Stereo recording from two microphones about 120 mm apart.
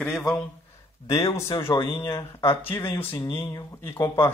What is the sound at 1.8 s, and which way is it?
Speech, 45° left (ahead or behind).